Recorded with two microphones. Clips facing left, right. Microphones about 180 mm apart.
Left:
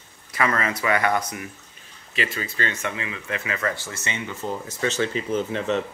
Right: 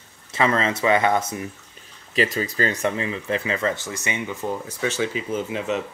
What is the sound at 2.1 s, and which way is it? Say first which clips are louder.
Speech: right 6 dB; 40° right (ahead or behind).